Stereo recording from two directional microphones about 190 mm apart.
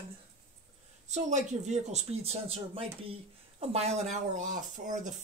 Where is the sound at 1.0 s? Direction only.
35° right (ahead or behind).